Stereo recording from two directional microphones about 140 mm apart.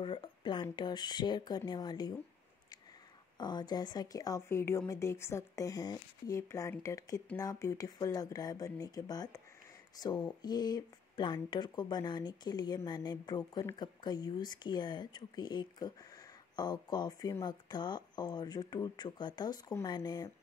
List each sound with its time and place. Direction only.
0.0 s speech: 35° left (ahead or behind)
3.3 s speech: 30° left (ahead or behind)